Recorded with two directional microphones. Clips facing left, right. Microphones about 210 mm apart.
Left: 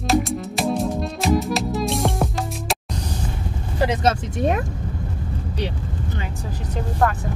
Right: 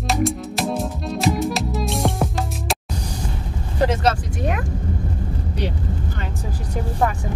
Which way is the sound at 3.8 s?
25° left (ahead or behind).